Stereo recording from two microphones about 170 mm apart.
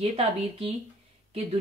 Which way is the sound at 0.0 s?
35° right (ahead or behind).